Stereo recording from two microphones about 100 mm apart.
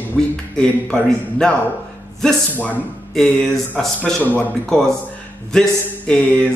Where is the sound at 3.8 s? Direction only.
5° left (ahead or behind).